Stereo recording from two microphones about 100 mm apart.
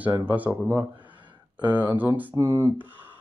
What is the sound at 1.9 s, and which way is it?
Speech, 20° right (ahead or behind).